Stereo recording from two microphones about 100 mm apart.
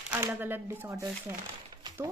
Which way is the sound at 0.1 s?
20° right (ahead or behind).